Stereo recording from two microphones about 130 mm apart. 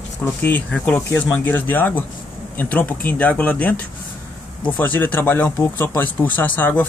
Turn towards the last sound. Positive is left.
turn(degrees=15)  # may be behind; listen again after turning